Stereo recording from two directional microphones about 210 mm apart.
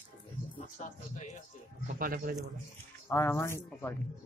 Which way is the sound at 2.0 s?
45° right (ahead or behind).